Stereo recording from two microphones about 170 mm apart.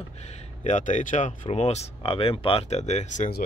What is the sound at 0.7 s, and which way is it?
Speech, 45° left (ahead or behind).